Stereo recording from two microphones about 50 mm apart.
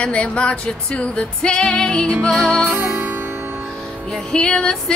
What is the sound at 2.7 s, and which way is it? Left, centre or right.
Music, right.